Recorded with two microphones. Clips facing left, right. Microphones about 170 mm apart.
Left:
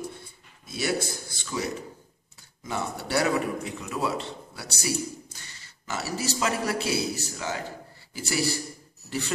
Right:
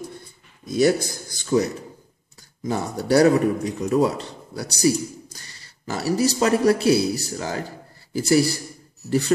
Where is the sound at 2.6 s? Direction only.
40° right (ahead or behind).